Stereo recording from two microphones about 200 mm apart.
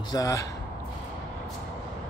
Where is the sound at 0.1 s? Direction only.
15° left (ahead or behind).